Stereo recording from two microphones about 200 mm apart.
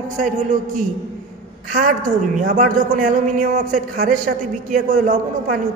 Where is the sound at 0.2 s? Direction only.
40° right (ahead or behind).